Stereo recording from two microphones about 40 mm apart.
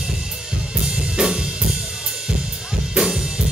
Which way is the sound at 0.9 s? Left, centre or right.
Right.